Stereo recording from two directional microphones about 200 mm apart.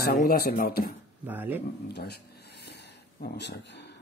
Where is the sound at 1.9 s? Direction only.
55° left (ahead or behind).